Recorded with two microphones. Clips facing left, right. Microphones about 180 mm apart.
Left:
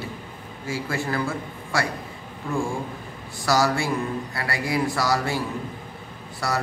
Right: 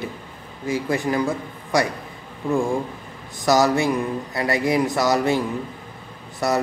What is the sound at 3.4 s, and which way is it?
A man's voice, 20° right (ahead or behind).